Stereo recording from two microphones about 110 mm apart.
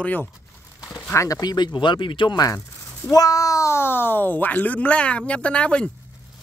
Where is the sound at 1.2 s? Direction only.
35° left (ahead or behind); by 2.4 s 50° left (ahead or behind).